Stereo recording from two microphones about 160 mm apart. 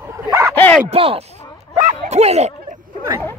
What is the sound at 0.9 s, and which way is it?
Speech, 35° right (ahead or behind).